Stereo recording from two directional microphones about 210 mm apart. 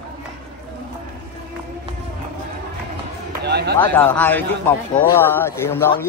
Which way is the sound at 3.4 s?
50° right (ahead or behind).